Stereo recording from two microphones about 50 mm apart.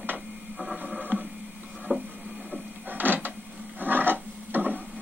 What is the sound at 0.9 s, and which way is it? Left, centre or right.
Radio, right.